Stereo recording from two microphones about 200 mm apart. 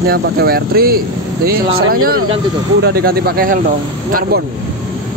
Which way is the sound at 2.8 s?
50° right (ahead or behind).